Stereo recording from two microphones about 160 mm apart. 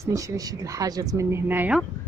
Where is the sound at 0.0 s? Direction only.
20° right (ahead or behind).